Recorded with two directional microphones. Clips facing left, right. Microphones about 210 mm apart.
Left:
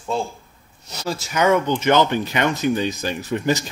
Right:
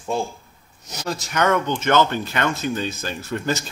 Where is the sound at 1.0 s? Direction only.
5° left (ahead or behind).